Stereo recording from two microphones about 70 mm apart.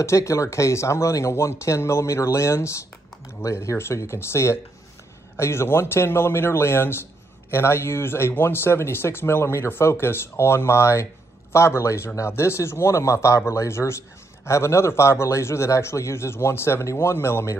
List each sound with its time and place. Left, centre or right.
0.0 s a man's voice: left